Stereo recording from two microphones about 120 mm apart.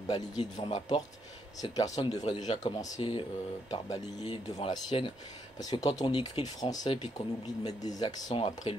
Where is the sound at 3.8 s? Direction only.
30° left (ahead or behind).